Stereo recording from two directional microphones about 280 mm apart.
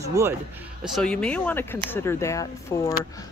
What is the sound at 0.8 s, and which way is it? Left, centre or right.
Speech, centre.